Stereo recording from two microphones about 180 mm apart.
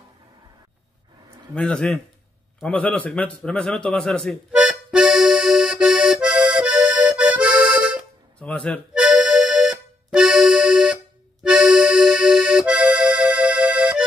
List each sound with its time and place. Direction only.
1.5 s a man's voice: 5° left (ahead or behind)
4.5 s accordion: 5° right (ahead or behind)
8.4 s speech: 5° left (ahead or behind)
8.9 s accordion: 5° right (ahead or behind)